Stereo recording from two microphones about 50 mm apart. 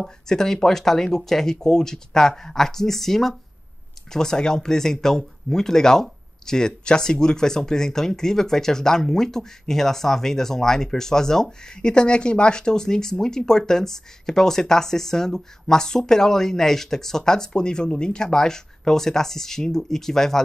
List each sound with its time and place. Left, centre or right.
0.0 s speech: centre